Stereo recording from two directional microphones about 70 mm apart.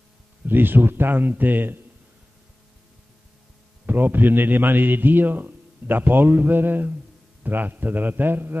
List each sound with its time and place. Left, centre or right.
0.5 s a man's voice: right
3.8 s a man's voice: right